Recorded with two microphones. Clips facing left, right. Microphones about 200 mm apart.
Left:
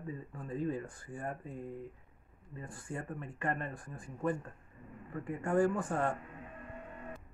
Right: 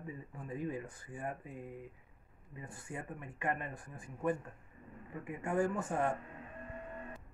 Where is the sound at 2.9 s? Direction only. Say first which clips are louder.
Left 3 dB; 15° right (ahead or behind).